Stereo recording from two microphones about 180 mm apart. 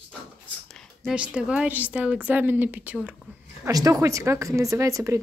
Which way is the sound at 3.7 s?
20° right (ahead or behind).